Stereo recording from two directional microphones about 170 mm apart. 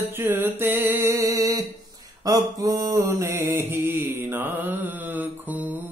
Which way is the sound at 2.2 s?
20° right (ahead or behind).